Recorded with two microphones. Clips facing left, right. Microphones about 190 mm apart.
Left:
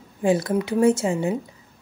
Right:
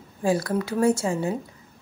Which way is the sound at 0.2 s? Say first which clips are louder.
Left 3 dB; 20° left (ahead or behind).